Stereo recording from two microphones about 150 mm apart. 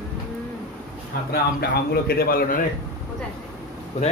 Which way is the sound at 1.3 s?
90° left.